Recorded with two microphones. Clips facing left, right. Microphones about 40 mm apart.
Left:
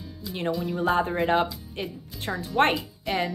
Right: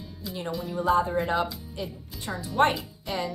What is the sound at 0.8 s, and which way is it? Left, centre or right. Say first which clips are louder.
A woman's voice: even; left.